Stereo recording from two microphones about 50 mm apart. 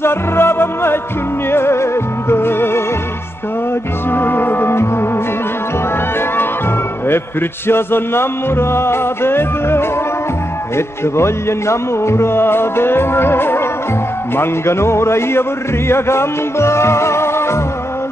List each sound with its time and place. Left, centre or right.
0.0 s music: left
4.1 s music: left
7.6 s music: left
11.1 s music: left
14.3 s a man's voice: left
15.9 s music: left